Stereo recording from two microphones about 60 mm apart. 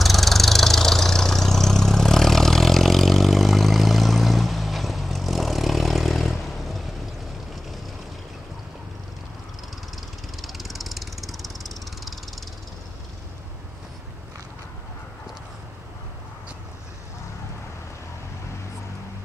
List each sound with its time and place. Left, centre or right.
0.0 s vehicle: centre
10.4 s vehicle: centre